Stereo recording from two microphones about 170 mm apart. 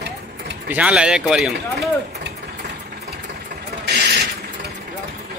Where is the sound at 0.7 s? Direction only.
5° right (ahead or behind).